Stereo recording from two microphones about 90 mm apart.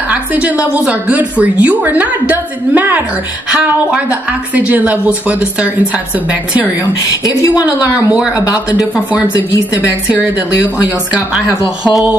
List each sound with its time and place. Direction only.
0.1 s a woman's voice: 15° right (ahead or behind)
6.8 s a woman's voice: 40° left (ahead or behind)
7.6 s a woman's voice: 15° right (ahead or behind)
10.8 s a woman's voice: 15° right (ahead or behind)